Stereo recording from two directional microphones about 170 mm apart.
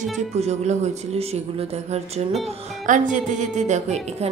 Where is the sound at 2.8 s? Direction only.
50° right (ahead or behind).